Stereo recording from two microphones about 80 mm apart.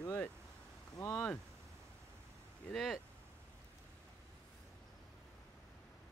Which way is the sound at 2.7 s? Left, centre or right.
Centre.